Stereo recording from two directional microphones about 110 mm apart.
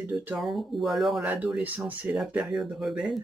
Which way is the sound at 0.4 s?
Centre (ahead or behind).